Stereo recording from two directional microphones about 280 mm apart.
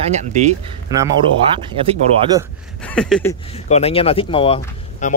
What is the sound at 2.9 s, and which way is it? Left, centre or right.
Speech, centre.